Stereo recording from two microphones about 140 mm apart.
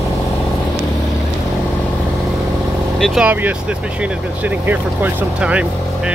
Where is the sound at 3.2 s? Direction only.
10° right (ahead or behind).